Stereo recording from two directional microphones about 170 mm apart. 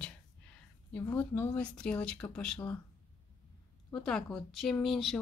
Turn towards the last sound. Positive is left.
turn(degrees=0)  # may be behind; listen again after turning